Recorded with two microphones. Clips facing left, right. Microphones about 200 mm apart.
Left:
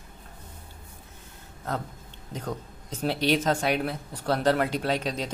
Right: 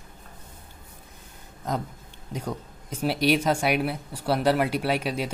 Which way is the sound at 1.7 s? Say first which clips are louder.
Right 3 dB; 15° right (ahead or behind).